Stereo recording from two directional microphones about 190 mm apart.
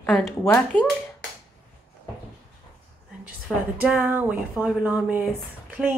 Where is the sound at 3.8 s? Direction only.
10° right (ahead or behind).